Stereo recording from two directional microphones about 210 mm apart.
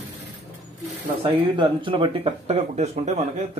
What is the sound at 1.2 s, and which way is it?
Speech, 25° right (ahead or behind).